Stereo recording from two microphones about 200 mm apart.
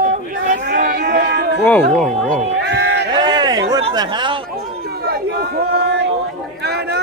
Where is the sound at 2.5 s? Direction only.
60° right (ahead or behind).